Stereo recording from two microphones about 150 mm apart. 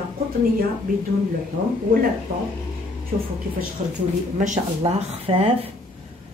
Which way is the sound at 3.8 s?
50° right (ahead or behind).